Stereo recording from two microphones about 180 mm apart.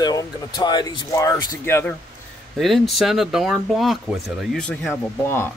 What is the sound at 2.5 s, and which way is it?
Speech, centre (ahead or behind).